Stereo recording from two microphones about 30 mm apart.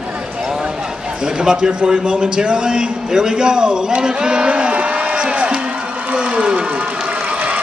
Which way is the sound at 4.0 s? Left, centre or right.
Right.